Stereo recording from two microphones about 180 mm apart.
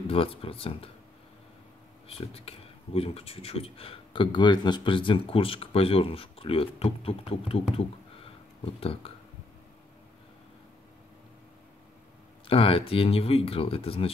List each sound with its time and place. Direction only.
0.1 s speech: 30° left (ahead or behind)
2.0 s speech: 35° left (ahead or behind)
12.4 s speech: 30° left (ahead or behind)